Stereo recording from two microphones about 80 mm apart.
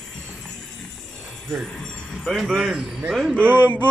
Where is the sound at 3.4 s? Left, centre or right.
Right.